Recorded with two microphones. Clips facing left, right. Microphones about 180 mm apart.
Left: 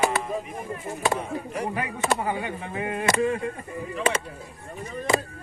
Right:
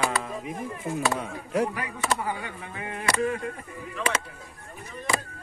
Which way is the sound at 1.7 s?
25° left (ahead or behind).